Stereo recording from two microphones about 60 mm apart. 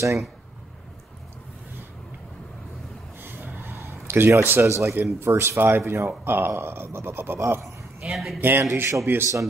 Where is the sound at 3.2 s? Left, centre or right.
Right.